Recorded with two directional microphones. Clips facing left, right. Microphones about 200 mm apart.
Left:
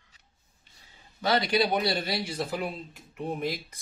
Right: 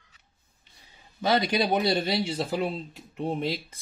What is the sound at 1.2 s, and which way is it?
Speech, 20° right (ahead or behind).